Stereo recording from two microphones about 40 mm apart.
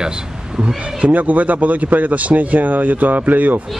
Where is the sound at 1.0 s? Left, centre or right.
Right.